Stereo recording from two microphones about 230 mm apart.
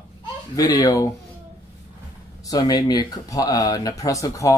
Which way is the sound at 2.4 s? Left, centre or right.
Centre.